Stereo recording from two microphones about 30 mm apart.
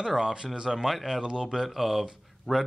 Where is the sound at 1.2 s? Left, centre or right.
Right.